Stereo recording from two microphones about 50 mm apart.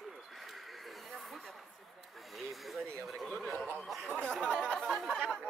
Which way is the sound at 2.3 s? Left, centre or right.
Centre.